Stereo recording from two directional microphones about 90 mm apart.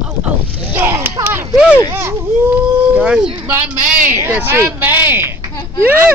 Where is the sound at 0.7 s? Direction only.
25° right (ahead or behind).